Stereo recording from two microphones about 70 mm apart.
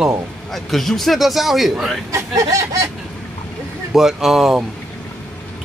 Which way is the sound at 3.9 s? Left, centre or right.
Centre.